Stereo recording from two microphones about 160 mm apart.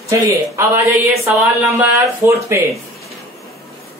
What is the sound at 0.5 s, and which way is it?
Speech, 15° right (ahead or behind).